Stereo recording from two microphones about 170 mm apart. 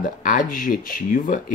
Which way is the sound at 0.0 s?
50° left (ahead or behind).